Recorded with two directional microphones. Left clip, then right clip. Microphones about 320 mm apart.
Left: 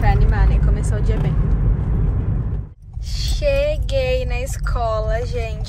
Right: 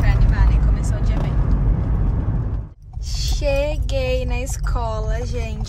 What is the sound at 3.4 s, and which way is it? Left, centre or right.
Child singing, centre.